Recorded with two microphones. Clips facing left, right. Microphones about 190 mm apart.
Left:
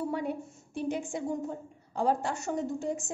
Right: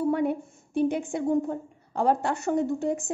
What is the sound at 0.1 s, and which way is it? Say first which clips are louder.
A woman's voice: right 7 dB; 60° right (ahead or behind).